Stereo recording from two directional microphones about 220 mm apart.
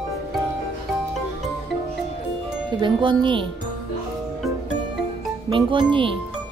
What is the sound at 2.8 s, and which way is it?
Speech, 20° right (ahead or behind).